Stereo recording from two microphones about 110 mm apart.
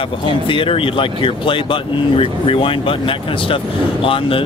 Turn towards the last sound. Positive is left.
turn(degrees=55)  # may be behind; listen again after turning